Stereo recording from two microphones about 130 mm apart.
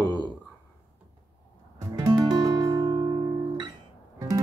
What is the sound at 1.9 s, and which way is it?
Music, 25° right (ahead or behind).